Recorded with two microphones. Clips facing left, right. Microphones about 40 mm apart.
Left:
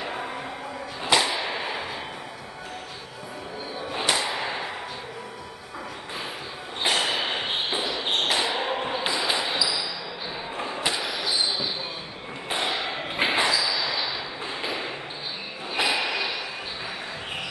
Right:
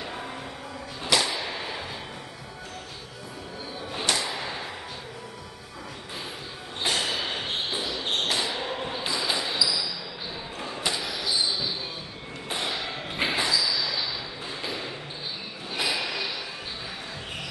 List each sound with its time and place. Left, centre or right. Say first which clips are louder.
0.0 s music: left 4 dB; centre
1.0 s whip: left 3 dB; centre
3.9 s whip: left 2 dB; centre
6.8 s a sound: left 3 dB; left
10.6 s basketball bounce: left 2 dB; centre
12.4 s a sound: left 3 dB; left